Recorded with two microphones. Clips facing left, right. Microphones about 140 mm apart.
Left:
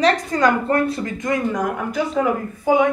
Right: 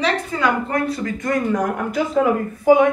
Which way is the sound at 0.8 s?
25° left (ahead or behind).